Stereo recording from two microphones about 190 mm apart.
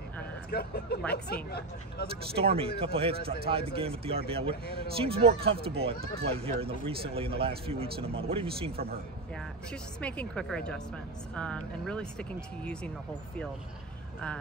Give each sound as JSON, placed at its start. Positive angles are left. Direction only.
{"t": 0.5, "sound": "speech", "side_deg": 55}
{"t": 2.3, "sound": "speech", "side_deg": -30}
{"t": 9.9, "sound": "speech", "side_deg": 5}